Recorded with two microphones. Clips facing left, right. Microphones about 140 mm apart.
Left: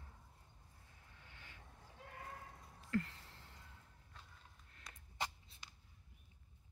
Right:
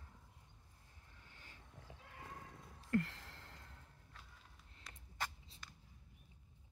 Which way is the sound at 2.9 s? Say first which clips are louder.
Right 3 dB; 75° right (ahead or behind).